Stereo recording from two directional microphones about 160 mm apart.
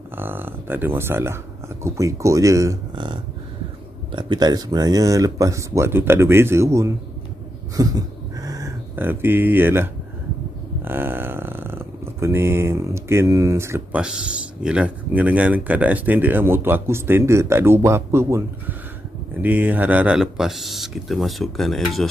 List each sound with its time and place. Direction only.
0.2 s speech: 15° right (ahead or behind)
10.8 s a sound: 15° right (ahead or behind)
19.4 s speech: 10° right (ahead or behind)